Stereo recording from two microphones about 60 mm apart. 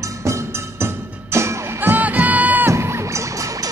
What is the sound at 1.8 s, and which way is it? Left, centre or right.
Music, right.